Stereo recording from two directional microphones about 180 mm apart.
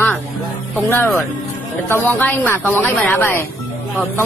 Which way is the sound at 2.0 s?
10° left (ahead or behind).